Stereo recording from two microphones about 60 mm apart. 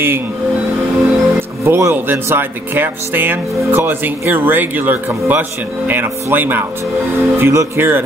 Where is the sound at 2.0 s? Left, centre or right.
Right.